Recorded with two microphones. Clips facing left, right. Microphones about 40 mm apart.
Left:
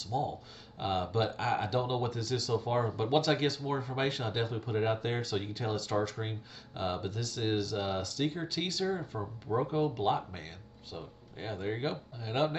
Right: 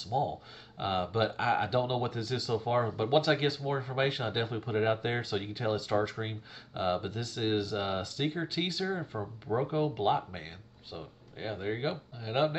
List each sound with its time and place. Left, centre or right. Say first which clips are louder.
0.1 s speech: right 3 dB; right